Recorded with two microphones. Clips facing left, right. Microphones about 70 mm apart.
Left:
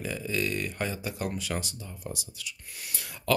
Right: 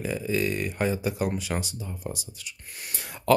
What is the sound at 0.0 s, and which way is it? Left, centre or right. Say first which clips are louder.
Speech: right 4 dB; centre.